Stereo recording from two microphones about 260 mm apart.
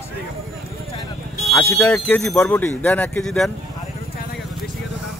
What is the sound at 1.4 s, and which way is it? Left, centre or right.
Speech, centre.